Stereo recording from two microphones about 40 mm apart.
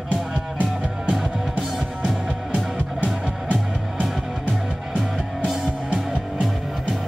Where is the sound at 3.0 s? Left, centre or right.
Right.